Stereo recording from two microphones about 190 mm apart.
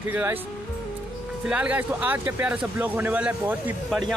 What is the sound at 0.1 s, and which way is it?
Speech, 10° right (ahead or behind).